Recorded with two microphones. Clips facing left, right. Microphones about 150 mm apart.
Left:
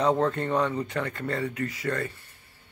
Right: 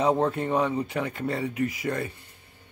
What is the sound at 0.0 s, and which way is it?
Speech, 10° right (ahead or behind).